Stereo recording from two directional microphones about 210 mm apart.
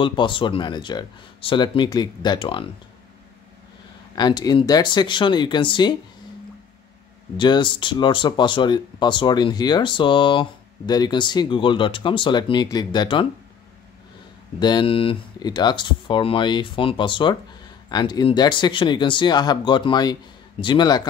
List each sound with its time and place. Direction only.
0.0 s speech: 25° left (ahead or behind)
4.1 s speech: 20° left (ahead or behind)
7.3 s speech: 20° left (ahead or behind)
14.6 s speech: 20° left (ahead or behind)